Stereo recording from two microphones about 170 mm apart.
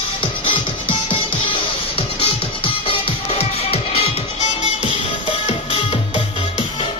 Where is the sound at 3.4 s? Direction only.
35° left (ahead or behind).